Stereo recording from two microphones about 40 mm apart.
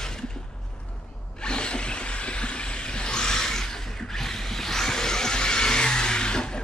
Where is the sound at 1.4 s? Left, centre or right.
Left.